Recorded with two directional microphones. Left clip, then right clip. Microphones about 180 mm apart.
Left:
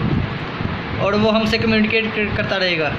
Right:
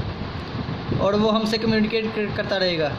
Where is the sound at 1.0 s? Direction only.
50° right (ahead or behind).